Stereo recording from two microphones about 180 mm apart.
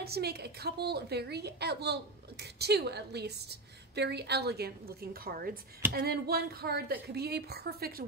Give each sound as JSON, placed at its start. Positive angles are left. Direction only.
{"t": 0.0, "sound": "a woman's voice", "side_deg": -60}